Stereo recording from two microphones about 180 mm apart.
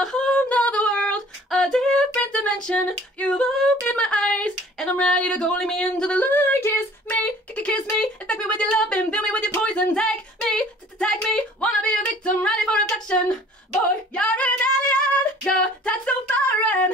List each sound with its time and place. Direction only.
0.0 s female singing: 5° left (ahead or behind)
3.8 s speech: 5° left (ahead or behind)
12.3 s a sound: 5° left (ahead or behind)
14.1 s female singing: 5° left (ahead or behind)